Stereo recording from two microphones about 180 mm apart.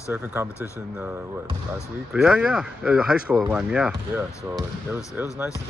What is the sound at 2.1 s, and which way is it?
Speech, 5° right (ahead or behind).